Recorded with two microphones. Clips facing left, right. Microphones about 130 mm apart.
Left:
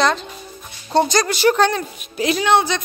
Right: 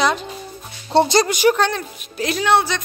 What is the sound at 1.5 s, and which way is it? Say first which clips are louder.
A woman's voice: left 3 dB; centre (ahead or behind).